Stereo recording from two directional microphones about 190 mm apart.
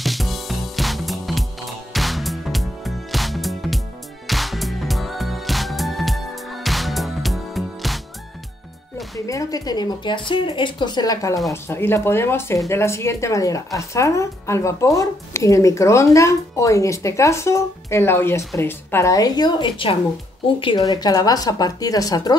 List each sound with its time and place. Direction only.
0.0 s music: centre (ahead or behind)
9.2 s speech: 15° left (ahead or behind)